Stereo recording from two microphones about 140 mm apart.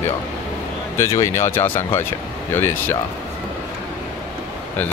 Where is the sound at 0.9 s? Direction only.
20° left (ahead or behind).